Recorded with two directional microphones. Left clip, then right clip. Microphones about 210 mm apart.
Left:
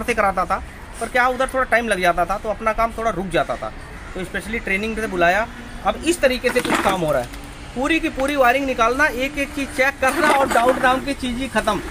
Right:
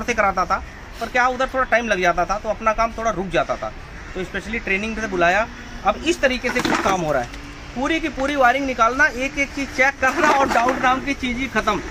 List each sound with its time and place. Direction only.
0.0 s speech: 15° left (ahead or behind)
6.6 s speech: centre (ahead or behind)
7.8 s speech: 25° left (ahead or behind)
10.2 s speech: 5° left (ahead or behind)
10.8 s speech: 25° left (ahead or behind)